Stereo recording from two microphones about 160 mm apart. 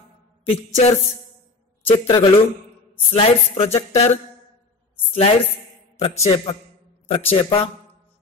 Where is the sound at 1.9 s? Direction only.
35° left (ahead or behind).